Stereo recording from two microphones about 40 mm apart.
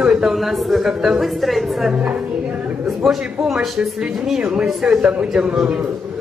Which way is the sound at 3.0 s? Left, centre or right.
Centre.